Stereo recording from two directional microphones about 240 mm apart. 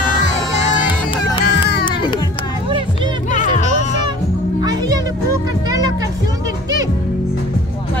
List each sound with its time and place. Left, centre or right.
1.1 s music: left
3.3 s music: left
4.6 s music: centre